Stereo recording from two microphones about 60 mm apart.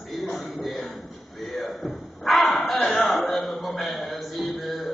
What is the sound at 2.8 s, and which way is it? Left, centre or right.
A man's voice, centre.